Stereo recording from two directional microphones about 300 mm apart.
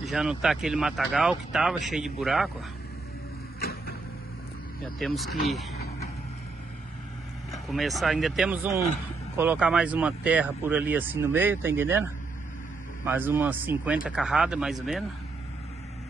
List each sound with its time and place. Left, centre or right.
0.0 s speech: centre
3.5 s a sound: left
4.8 s speech: centre
7.7 s speech: centre